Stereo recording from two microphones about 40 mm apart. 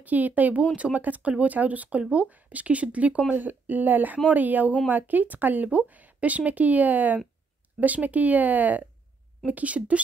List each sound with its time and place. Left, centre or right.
0.0 s speech: right